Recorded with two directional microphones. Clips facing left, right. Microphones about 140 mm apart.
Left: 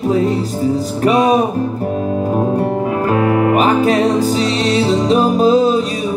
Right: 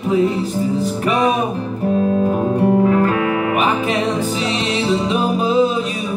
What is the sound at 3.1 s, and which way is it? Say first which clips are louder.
Music: left 5 dB; 35° left (ahead or behind).